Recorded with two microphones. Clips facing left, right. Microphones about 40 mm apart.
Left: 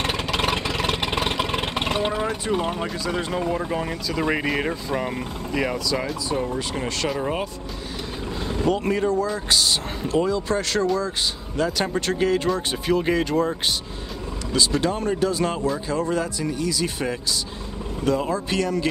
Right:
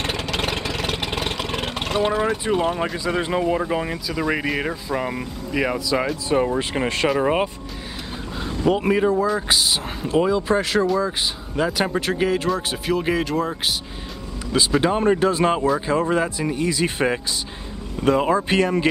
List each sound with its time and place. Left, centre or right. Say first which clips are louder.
0.0 s vehicle: left 1 dB; centre
3.0 s speech: right 3 dB; centre
4.2 s speech: even; centre
6.2 s speech: right 5 dB; right
8.6 s speech: right 4 dB; centre
14.5 s speech: right 3 dB; centre